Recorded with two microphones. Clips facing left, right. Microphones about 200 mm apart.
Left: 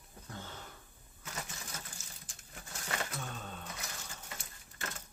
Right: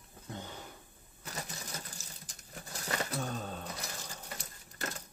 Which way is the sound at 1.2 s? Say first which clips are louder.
Right 2 dB; 35° right (ahead or behind).